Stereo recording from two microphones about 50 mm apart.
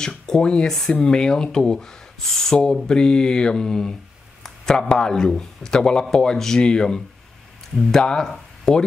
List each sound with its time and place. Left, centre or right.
0.3 s speech: centre